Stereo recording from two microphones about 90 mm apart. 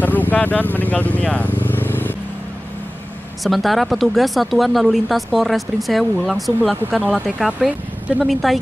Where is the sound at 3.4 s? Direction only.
Centre (ahead or behind).